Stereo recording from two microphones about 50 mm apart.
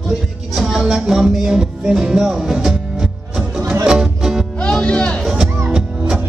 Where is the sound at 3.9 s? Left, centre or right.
Centre.